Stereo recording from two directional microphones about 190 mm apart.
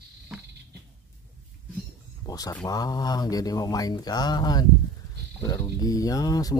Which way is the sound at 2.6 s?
20° left (ahead or behind).